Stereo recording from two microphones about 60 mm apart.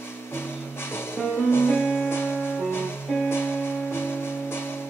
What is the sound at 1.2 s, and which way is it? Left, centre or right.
Music, left.